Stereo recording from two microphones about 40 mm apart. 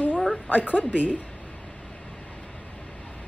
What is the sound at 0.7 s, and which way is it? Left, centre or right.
Speech, left.